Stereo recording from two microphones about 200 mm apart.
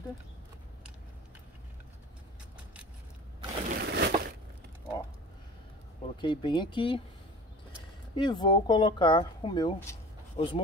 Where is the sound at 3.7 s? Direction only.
55° right (ahead or behind).